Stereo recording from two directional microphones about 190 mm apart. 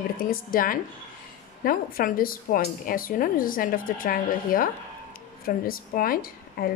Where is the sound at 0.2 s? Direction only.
50° left (ahead or behind).